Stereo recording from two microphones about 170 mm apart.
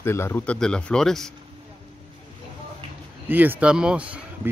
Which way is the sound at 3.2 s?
10° right (ahead or behind).